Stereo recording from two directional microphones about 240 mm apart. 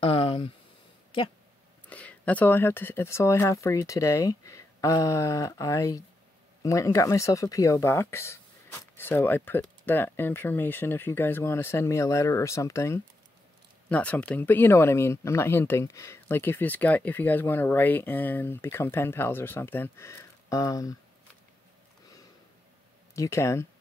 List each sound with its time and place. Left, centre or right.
0.0 s a sound: left
1.9 s speech: centre
23.1 s speech: centre